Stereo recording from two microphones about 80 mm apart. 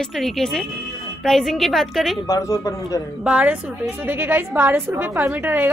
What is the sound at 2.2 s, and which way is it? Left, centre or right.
Speech, left.